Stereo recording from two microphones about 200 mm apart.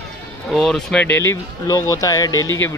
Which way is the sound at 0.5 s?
Centre (ahead or behind).